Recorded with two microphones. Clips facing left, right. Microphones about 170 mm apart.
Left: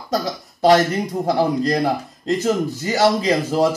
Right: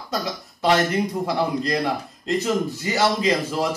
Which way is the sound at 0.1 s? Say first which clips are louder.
Left 5 dB; 40° left (ahead or behind).